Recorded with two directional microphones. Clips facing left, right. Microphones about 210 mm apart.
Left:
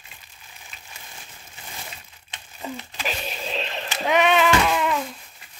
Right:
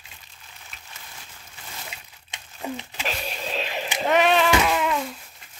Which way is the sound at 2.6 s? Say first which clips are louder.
Right 2 dB; 10° right (ahead or behind).